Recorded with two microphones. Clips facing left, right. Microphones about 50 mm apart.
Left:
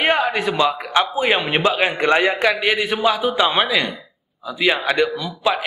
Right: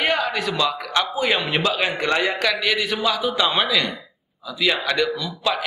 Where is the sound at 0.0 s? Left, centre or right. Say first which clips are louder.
Left 4 dB; left.